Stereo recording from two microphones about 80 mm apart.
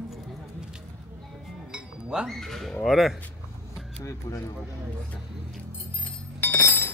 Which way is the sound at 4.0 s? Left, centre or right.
Left.